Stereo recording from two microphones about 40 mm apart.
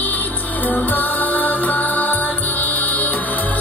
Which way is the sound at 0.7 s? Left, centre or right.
Left.